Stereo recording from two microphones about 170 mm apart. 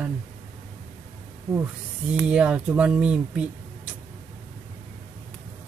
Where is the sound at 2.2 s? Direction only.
5° right (ahead or behind).